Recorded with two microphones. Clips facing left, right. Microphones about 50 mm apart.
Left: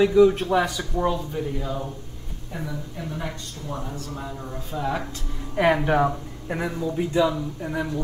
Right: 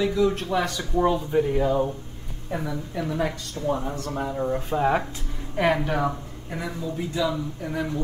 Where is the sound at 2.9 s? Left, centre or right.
Right.